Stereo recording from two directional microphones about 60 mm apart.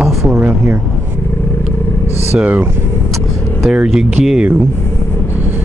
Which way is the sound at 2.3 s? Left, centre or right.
Right.